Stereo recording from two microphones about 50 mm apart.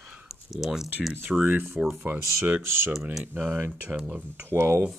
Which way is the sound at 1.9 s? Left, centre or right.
Right.